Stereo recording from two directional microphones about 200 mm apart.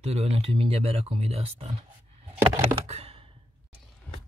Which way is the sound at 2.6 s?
30° right (ahead or behind).